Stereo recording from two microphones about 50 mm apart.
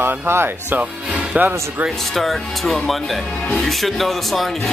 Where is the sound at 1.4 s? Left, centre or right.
Right.